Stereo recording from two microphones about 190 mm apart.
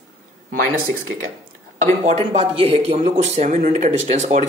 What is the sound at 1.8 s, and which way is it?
Speech, 35° right (ahead or behind).